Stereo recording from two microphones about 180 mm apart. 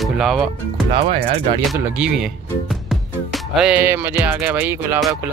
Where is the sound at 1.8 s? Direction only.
5° right (ahead or behind).